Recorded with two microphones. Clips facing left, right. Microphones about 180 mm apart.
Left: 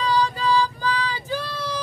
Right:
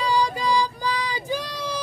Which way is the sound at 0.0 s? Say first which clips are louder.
Left 1 dB; 10° right (ahead or behind).